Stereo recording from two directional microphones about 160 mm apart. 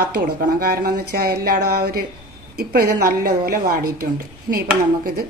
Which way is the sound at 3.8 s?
65° right (ahead or behind).